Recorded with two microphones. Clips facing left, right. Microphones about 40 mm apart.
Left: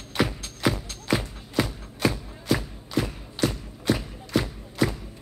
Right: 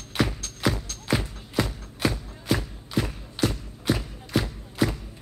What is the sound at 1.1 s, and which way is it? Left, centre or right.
Music, centre.